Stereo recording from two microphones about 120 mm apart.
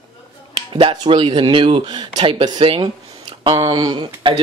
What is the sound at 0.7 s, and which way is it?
Speech, 50° right (ahead or behind).